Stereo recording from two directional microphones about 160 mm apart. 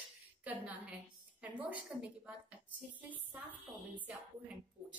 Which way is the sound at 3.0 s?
10° right (ahead or behind).